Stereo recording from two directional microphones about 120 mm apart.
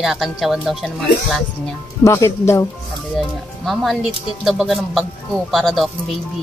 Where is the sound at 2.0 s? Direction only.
25° left (ahead or behind).